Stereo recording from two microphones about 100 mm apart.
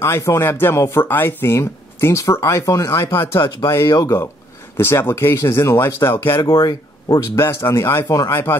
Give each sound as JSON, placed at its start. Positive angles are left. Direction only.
{"t": 0.0, "sound": "speech", "side_deg": 30}
{"t": 3.8, "sound": "speech", "side_deg": 45}
{"t": 4.7, "sound": "speech", "side_deg": 25}
{"t": 6.4, "sound": "speech", "side_deg": 40}
{"t": 7.3, "sound": "speech", "side_deg": 25}